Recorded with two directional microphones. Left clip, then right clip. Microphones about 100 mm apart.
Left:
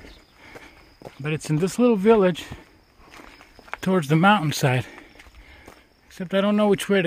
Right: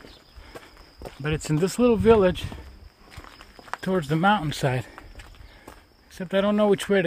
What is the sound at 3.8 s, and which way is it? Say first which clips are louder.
Speech: left 3 dB; 90° left.